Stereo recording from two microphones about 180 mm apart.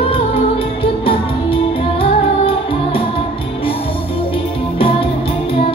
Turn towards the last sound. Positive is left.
turn(degrees=30)  # may be behind; listen again after turning